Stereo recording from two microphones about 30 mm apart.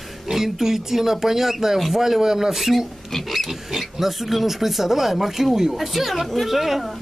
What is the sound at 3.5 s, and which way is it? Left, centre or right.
Speech, centre.